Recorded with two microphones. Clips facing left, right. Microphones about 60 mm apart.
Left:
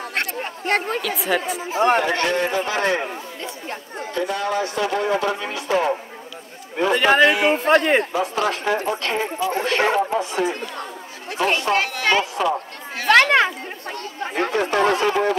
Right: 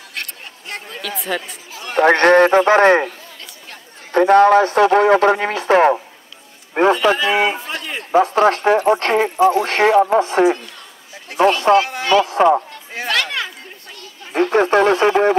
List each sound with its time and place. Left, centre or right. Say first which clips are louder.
0.1 s a sound: left 3 dB; left
1.0 s speech: left 2 dB; centre
1.7 s speech: left 15 dB; left
2.0 s speech: right 9 dB; right
4.1 s speech: right 13 dB; right
7.0 s a man's voice: left 1 dB; left
7.2 s speech: right 1 dB; right
7.5 s a man's voice: left 11 dB; left
8.1 s speech: right 8 dB; right
12.0 s a sound: right 4 dB; left
12.3 s speech: right 8 dB; right
13.1 s chatter: left 8 dB; left
14.5 s speech: right 6 dB; right